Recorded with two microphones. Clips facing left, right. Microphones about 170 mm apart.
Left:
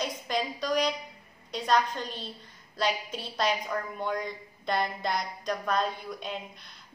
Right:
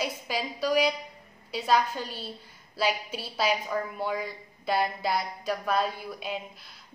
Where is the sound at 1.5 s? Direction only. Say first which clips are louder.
Right 1 dB; 5° right (ahead or behind).